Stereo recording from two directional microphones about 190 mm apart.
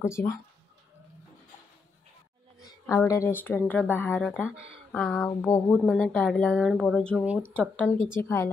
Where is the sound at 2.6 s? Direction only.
15° left (ahead or behind).